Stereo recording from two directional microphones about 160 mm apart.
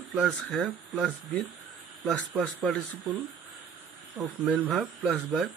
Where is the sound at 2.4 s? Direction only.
Centre (ahead or behind).